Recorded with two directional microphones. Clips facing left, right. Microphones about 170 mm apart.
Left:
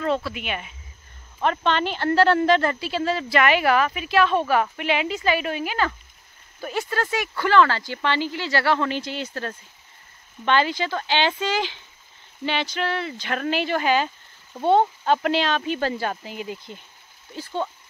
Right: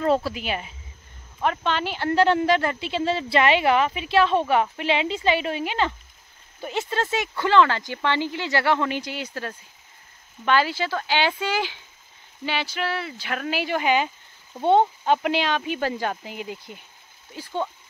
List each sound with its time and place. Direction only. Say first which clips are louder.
0.0 s speech: right 3 dB; 35° right (ahead or behind)
1.4 s speech: left 2 dB; 10° right (ahead or behind)